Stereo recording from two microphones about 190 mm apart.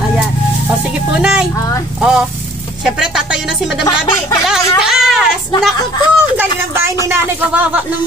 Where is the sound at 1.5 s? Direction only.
15° left (ahead or behind).